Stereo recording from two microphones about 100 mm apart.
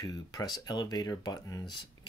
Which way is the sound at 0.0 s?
40° left (ahead or behind).